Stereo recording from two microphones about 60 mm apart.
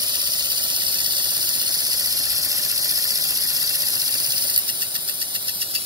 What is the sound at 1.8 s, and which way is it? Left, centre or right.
Cricket, right.